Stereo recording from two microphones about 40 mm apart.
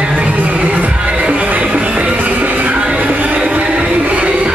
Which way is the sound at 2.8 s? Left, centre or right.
Right.